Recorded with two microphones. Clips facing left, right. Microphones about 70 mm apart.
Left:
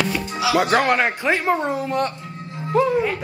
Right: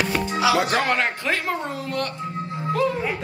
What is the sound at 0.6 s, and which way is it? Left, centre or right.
Speech, centre.